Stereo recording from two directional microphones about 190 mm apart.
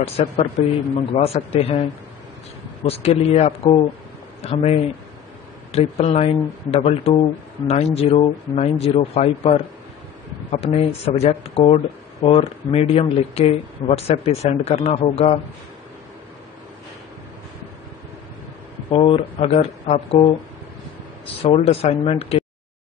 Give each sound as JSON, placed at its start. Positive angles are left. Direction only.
{"t": 0.0, "sound": "speech", "side_deg": 35}
{"t": 2.8, "sound": "speech", "side_deg": 35}
{"t": 18.9, "sound": "speech", "side_deg": 30}
{"t": 21.5, "sound": "speech", "side_deg": 30}